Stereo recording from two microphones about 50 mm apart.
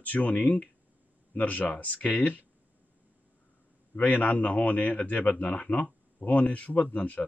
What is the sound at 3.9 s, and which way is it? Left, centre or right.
A man's voice, left.